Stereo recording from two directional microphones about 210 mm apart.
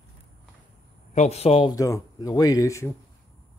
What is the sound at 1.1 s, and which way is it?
Speech, 30° left (ahead or behind).